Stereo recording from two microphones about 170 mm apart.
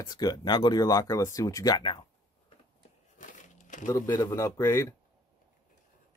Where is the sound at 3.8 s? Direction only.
15° left (ahead or behind).